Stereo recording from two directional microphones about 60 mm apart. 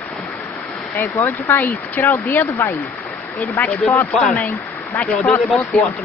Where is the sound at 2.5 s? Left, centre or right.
Left.